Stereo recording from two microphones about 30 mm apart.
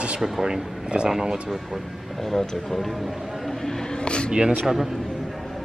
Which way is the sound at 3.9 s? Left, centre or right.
Left.